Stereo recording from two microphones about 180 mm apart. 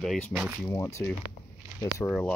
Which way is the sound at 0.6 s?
15° left (ahead or behind).